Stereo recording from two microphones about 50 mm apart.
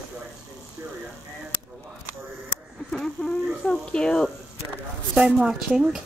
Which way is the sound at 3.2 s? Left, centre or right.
Left.